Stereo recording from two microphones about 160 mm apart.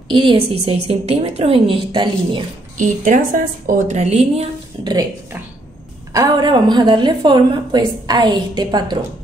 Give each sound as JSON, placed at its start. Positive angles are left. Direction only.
{"t": 0.1, "sound": "a woman's voice", "side_deg": -30}
{"t": 2.8, "sound": "a woman's voice", "side_deg": -55}
{"t": 6.1, "sound": "a woman's voice", "side_deg": -30}